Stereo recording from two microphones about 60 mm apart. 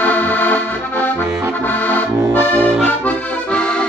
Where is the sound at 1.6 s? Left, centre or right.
Left.